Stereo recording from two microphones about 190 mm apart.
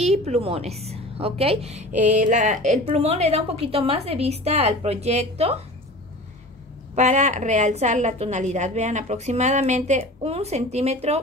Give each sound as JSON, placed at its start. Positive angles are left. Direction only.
{"t": 0.0, "sound": "a woman's voice", "side_deg": -35}
{"t": 7.0, "sound": "a woman's voice", "side_deg": -40}